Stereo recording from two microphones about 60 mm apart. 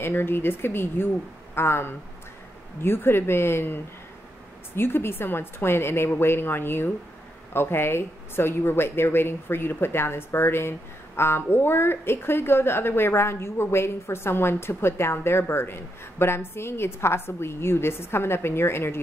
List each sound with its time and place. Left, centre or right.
0.0 s a woman's voice: left